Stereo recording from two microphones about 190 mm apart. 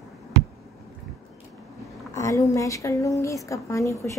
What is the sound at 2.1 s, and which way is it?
A woman's voice, 15° left (ahead or behind).